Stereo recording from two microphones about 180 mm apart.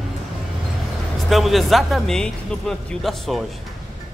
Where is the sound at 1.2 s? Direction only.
Centre (ahead or behind).